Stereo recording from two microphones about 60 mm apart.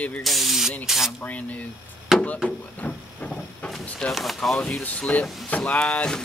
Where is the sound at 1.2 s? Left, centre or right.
Left.